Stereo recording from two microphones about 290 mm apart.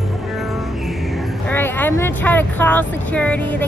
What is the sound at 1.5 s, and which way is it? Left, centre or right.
Speech, centre.